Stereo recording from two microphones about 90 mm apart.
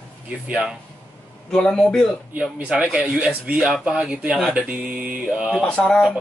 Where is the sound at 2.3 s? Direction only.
15° right (ahead or behind).